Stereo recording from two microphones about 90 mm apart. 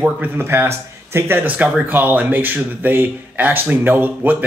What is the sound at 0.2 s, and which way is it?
Speech, 25° right (ahead or behind).